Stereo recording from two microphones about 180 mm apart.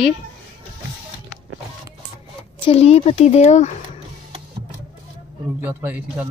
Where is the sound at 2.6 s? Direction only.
35° left (ahead or behind).